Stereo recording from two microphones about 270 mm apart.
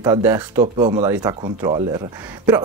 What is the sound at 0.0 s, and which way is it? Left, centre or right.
Speech, centre.